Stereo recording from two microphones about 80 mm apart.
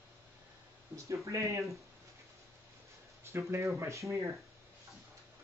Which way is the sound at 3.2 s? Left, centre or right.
Right.